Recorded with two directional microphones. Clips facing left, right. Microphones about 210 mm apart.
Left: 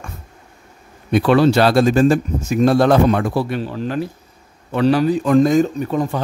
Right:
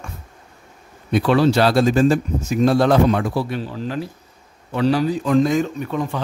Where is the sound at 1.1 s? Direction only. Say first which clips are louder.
Left 3 dB; 60° left (ahead or behind).